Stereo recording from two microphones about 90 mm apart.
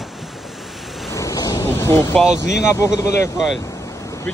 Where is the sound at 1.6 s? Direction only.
30° left (ahead or behind).